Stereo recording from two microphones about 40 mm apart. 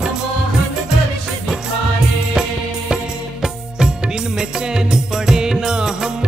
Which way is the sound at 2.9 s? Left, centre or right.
Centre.